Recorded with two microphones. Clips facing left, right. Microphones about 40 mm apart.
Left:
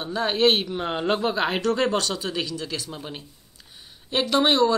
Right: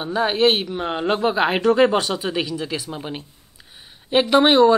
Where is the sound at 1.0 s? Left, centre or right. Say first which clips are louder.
Right 5 dB; right.